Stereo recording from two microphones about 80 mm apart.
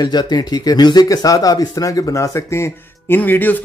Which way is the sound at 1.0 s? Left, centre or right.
Left.